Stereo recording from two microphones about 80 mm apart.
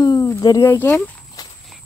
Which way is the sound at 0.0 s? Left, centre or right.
Left.